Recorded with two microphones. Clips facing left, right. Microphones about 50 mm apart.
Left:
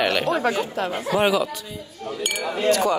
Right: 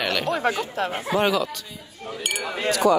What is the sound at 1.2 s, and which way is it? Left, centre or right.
Speech, centre.